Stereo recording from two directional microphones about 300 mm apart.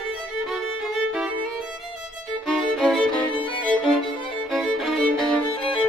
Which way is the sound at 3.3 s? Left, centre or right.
Centre.